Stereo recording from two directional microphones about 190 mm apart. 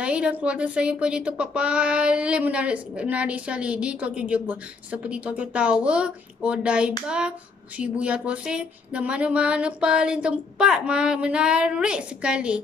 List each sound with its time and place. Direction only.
0.0 s speech: 5° right (ahead or behind)